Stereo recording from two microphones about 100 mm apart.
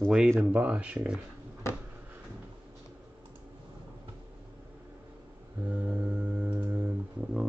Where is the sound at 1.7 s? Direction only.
25° left (ahead or behind).